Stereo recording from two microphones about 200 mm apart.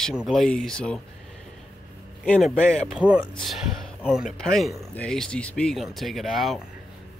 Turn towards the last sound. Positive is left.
turn(degrees=0)  # may be behind; listen again after turning